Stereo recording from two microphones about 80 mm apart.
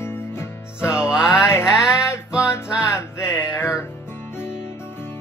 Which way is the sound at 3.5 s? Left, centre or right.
Left.